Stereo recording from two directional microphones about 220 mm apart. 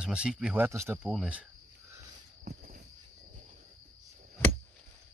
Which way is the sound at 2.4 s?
40° right (ahead or behind).